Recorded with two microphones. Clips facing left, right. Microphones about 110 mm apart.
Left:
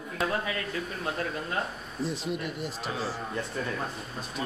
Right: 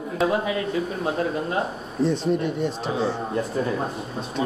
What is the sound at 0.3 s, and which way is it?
Speech, 20° right (ahead or behind).